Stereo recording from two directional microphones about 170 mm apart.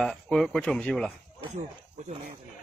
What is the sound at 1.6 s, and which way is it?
Speech, 45° right (ahead or behind).